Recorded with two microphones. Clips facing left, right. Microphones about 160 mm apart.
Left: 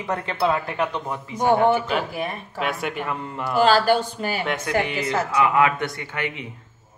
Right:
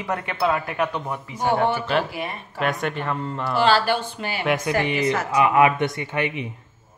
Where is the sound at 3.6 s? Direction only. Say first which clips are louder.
Left 3 dB; 40° left (ahead or behind).